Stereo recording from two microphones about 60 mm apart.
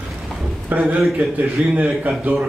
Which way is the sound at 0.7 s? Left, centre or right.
Right.